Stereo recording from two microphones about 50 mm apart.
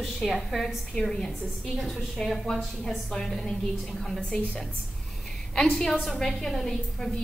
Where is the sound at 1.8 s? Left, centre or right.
Centre.